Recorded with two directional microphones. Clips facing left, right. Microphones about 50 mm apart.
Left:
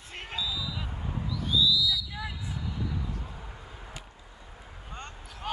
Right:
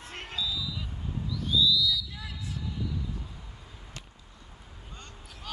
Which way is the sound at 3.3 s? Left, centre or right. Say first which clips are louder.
Left 5 dB; left.